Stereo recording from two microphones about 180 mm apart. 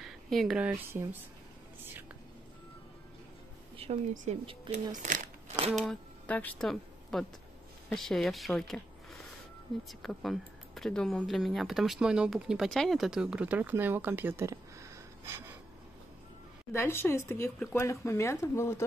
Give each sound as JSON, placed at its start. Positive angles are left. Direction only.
{"t": 0.0, "sound": "speech", "side_deg": 0}
{"t": 4.1, "sound": "speech", "side_deg": -45}
{"t": 5.6, "sound": "speech", "side_deg": -35}
{"t": 5.9, "sound": "speech", "side_deg": 10}
{"t": 9.8, "sound": "speech", "side_deg": 0}
{"t": 16.7, "sound": "speech", "side_deg": 15}